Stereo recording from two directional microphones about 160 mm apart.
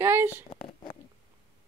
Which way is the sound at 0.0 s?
15° right (ahead or behind).